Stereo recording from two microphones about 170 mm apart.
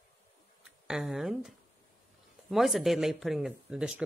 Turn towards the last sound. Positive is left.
turn(degrees=-5)  # may be behind; listen again after turning